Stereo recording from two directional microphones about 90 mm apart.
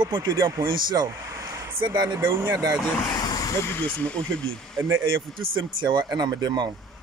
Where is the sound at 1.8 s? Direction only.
55° right (ahead or behind).